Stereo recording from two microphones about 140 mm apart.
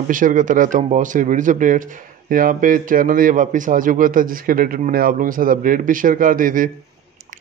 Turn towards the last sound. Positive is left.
turn(degrees=-75)  # may be behind; listen again after turning